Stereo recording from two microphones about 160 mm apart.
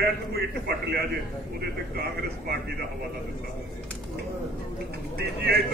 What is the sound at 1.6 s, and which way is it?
Speech, 75° right (ahead or behind).